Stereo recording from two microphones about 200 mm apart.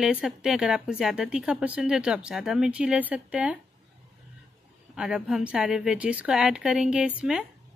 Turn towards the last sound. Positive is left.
turn(degrees=-5)  # may be behind; listen again after turning